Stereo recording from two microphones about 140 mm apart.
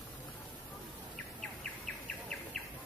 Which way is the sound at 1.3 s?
5° left (ahead or behind).